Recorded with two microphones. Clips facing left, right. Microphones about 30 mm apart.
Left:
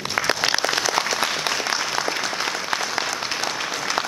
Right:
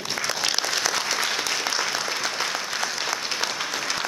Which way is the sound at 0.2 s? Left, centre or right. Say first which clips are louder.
Left 8 dB; left.